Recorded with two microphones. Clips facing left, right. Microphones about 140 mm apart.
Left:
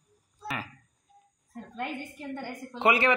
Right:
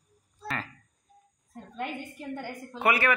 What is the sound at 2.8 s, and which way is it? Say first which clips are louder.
Speech: left 2 dB; 25° left (ahead or behind).